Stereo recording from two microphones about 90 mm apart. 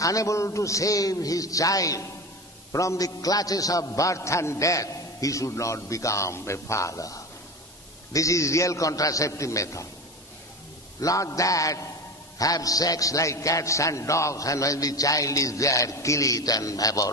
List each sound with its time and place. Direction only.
0.0 s a man's voice: 40° left (ahead or behind)
11.0 s a man's voice: 40° left (ahead or behind)